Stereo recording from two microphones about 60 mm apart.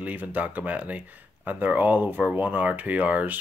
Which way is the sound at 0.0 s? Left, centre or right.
Right.